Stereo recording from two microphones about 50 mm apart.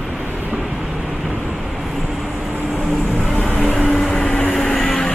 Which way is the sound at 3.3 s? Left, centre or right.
Centre.